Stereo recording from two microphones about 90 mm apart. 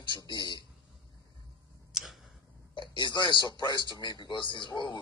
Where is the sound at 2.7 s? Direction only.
65° left (ahead or behind).